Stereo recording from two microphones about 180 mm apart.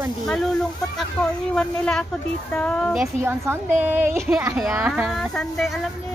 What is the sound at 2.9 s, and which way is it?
A child's voice, 5° right (ahead or behind).